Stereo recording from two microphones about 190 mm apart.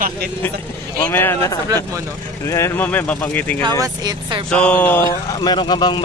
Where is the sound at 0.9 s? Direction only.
10° left (ahead or behind).